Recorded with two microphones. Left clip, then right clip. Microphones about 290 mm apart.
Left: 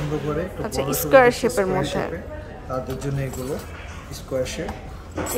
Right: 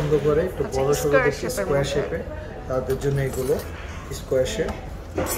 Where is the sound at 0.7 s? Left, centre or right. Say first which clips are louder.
Left 4 dB; left.